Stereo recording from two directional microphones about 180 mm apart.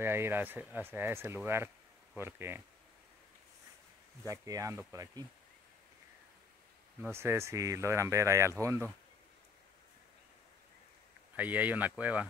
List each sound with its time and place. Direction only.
0.0 s speech: 15° right (ahead or behind)
4.3 s speech: 15° right (ahead or behind)
7.0 s speech: 15° right (ahead or behind)
11.3 s speech: 10° right (ahead or behind)